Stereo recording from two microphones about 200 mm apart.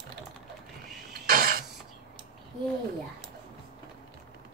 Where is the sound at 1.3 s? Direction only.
45° right (ahead or behind).